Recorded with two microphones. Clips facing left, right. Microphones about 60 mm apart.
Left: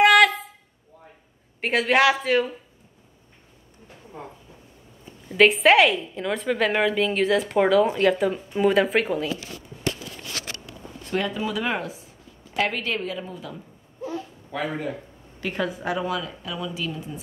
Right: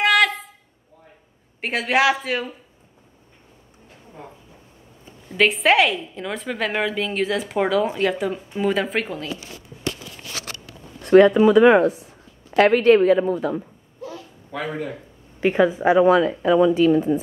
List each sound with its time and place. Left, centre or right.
0.0 s a sound: centre
1.6 s a woman's voice: centre
5.3 s a woman's voice: centre
11.0 s speech: right
14.5 s a woman's voice: centre
15.4 s a woman's voice: right
16.2 s speech: right